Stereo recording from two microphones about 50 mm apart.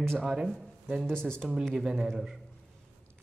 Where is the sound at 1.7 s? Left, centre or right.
Centre.